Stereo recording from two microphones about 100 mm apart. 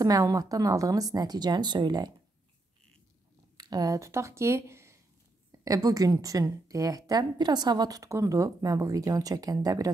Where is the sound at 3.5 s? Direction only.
40° right (ahead or behind); by 4.9 s 25° right (ahead or behind).